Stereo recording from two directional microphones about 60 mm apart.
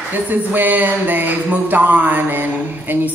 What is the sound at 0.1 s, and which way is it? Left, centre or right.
Speech, right.